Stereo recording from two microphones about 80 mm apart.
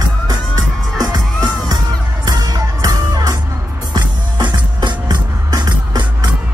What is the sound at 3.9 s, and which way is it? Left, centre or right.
Music, right.